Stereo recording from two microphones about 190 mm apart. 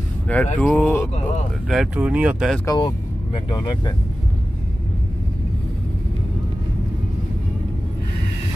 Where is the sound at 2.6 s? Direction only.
20° left (ahead or behind).